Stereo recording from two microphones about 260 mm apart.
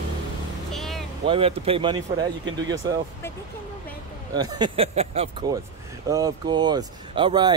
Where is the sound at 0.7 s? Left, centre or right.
Centre.